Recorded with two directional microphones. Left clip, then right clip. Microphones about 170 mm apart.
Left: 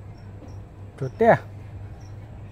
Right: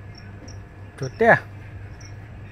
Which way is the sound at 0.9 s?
25° left (ahead or behind).